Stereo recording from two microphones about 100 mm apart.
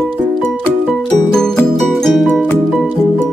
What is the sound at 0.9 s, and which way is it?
Music, 5° left (ahead or behind).